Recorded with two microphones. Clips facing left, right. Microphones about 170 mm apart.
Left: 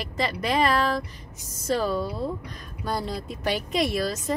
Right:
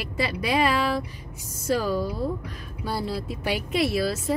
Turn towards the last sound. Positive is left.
turn(degrees=-5)  # may be behind; listen again after turning